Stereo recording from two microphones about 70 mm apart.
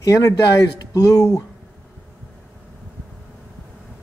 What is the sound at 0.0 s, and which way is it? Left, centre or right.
Speech, left.